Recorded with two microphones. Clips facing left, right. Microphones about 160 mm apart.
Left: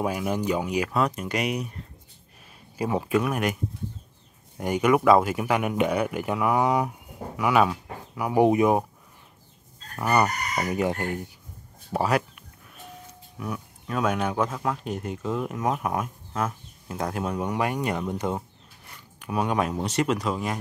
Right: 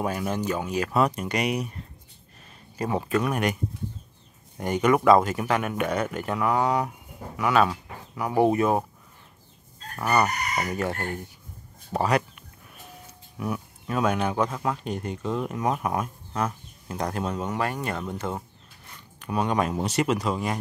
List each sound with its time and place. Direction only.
0.0 s speech: 10° left (ahead or behind)
0.9 s speech: centre (ahead or behind)
2.8 s speech: 5° left (ahead or behind)
4.6 s speech: 10° left (ahead or behind)
9.9 s chicken: 5° left (ahead or behind)
10.7 s speech: 15° left (ahead or behind)
11.9 s speech: 5° left (ahead or behind)
19.2 s speech: 5° left (ahead or behind)